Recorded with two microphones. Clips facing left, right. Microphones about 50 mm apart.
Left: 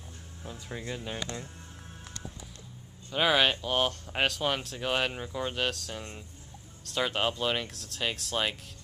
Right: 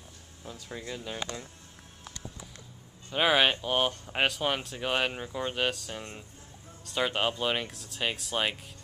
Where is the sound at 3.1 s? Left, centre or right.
Centre.